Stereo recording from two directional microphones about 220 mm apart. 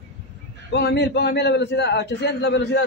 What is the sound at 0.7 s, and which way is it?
A man's voice, 50° left (ahead or behind).